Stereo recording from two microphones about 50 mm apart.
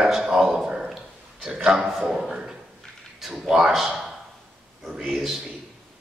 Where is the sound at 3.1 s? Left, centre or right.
Centre.